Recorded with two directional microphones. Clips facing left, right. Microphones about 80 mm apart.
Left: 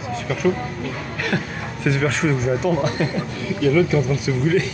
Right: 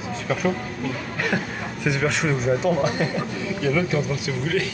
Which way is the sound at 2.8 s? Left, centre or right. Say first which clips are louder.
Left 1 dB; centre.